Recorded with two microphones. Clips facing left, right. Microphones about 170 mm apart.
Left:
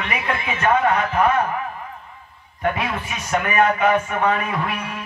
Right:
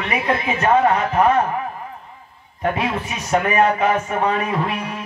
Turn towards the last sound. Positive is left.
turn(degrees=-30)  # may be behind; listen again after turning